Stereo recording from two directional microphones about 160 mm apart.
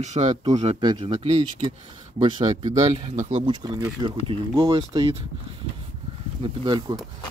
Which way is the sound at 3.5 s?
30° right (ahead or behind).